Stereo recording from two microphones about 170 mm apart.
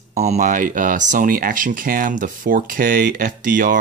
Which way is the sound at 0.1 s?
40° right (ahead or behind).